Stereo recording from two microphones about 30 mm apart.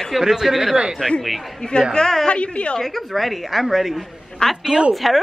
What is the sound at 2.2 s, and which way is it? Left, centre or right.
Speech, left.